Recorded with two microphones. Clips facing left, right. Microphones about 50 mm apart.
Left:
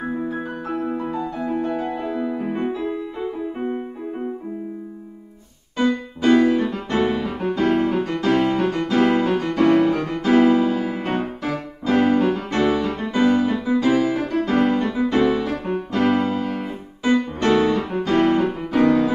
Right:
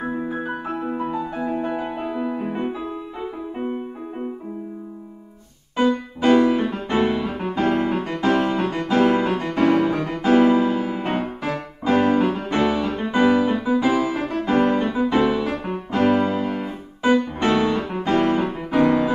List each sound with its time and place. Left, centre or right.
0.0 s music: centre
5.8 s music: centre
8.6 s music: centre
11.8 s music: right
12.1 s music: centre
12.9 s piano: centre
14.5 s music: centre
16.0 s music: centre
17.0 s music: centre
18.1 s music: centre